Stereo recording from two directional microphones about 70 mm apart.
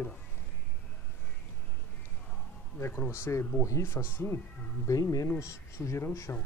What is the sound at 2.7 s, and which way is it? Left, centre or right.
A man's voice, left.